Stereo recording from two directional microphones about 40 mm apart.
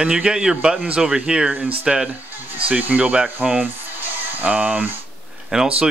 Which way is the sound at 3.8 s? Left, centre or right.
Right.